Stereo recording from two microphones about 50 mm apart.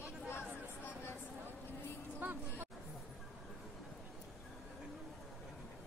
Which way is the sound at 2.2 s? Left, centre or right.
Right.